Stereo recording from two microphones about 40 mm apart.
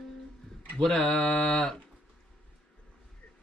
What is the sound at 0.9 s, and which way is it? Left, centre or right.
Speech, centre.